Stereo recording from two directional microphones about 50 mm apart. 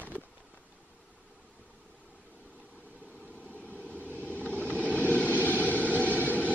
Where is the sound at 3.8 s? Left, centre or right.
Left.